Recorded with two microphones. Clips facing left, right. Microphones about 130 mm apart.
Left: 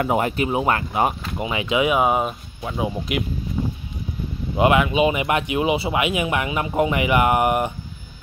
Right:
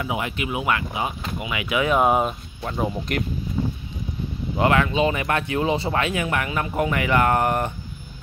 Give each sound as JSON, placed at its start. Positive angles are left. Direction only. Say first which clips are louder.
{"t": 0.0, "sound": "speech", "louder": "left 6 dB", "side_deg": 45}
{"t": 2.0, "sound": "speech", "louder": "even", "side_deg": 0}
{"t": 4.6, "sound": "speech", "louder": "left 3 dB", "side_deg": 15}